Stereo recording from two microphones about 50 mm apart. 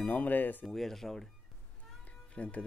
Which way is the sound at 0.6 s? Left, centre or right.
Centre.